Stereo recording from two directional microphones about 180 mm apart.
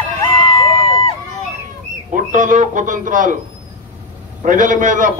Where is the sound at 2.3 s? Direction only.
45° right (ahead or behind).